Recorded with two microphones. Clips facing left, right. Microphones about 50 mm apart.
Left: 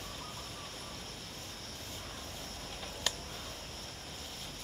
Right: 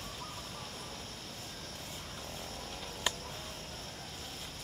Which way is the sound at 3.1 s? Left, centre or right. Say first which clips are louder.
Right 2 dB; centre.